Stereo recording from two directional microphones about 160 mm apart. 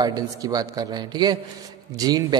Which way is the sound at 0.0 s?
25° right (ahead or behind).